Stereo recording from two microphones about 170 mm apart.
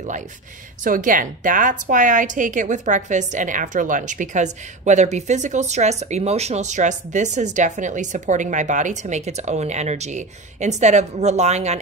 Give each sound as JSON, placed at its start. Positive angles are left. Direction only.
{"t": 0.8, "sound": "a woman's voice", "side_deg": -50}